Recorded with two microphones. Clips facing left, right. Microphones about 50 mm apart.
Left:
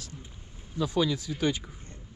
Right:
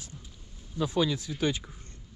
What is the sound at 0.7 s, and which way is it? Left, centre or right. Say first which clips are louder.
Speech: even; right.